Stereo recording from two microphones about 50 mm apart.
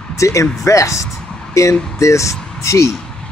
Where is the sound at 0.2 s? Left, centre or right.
Left.